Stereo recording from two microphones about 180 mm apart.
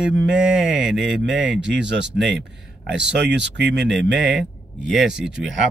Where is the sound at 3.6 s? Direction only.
70° right (ahead or behind).